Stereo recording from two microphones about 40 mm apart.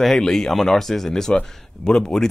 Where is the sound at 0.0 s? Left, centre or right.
Centre.